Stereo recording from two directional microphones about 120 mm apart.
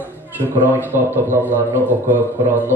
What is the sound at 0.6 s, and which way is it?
A man's voice, 15° right (ahead or behind).